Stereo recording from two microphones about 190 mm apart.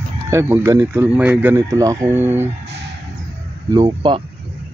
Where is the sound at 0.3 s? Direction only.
15° right (ahead or behind).